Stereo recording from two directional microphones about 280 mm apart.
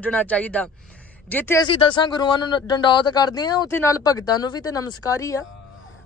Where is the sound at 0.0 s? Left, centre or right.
Centre.